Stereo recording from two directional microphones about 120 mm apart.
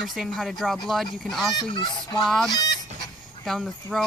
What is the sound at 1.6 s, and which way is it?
Speech, 40° left (ahead or behind).